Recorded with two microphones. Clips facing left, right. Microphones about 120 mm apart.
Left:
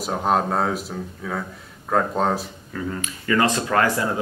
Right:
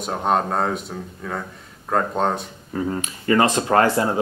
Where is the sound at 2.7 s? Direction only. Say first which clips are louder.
Right 4 dB; 30° right (ahead or behind).